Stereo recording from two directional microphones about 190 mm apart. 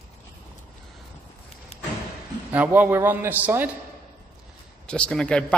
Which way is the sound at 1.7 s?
35° left (ahead or behind).